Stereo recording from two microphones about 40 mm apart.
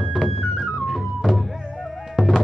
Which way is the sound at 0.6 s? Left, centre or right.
Centre.